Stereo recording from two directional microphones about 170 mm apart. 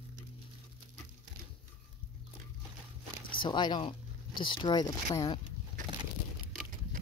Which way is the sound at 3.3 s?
25° left (ahead or behind).